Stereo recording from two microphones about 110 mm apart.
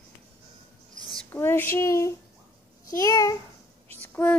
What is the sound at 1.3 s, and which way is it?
A woman's voice, 20° left (ahead or behind).